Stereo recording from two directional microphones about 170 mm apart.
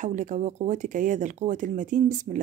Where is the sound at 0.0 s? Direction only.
45° right (ahead or behind).